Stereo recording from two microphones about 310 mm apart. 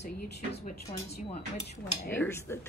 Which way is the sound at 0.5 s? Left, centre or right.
Left.